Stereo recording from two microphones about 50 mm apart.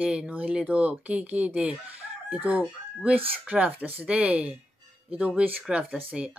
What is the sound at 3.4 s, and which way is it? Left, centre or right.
Speech, right.